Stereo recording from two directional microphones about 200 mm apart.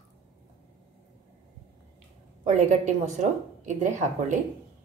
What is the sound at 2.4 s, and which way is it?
A woman's voice, 35° right (ahead or behind).